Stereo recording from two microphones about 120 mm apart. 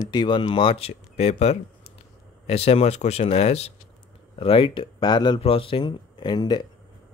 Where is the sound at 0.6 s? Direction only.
50° left (ahead or behind).